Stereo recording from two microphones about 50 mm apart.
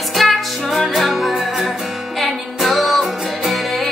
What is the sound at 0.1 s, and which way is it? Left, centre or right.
Music, centre.